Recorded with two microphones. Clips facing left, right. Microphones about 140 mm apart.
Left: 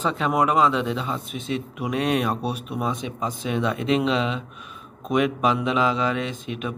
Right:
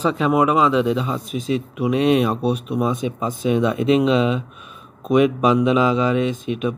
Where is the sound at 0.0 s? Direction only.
10° right (ahead or behind).